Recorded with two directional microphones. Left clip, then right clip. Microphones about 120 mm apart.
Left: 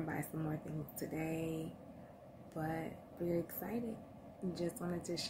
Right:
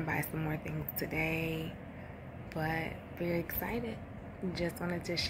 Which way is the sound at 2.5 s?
25° left (ahead or behind).